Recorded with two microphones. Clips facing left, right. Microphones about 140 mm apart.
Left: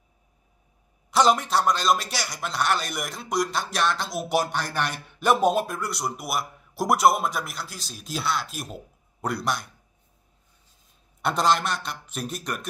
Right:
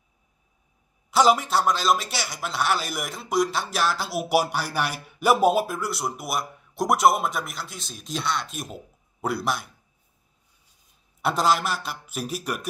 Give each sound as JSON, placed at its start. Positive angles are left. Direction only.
{"t": 1.1, "sound": "speech", "side_deg": -5}
{"t": 11.2, "sound": "speech", "side_deg": -5}